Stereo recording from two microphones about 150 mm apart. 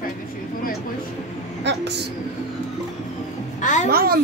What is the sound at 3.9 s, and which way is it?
Speech, 80° right.